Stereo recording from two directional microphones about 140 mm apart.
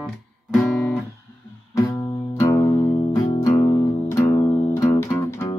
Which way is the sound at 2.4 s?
15° left (ahead or behind).